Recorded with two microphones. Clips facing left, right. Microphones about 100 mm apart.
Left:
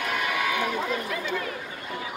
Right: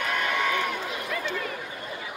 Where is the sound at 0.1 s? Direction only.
5° left (ahead or behind).